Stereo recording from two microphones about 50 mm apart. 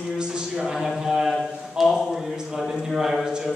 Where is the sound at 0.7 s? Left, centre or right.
Centre.